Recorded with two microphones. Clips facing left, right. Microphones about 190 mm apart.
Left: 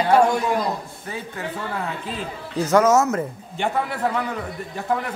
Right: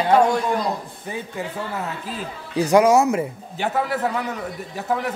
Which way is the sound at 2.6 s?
15° right (ahead or behind).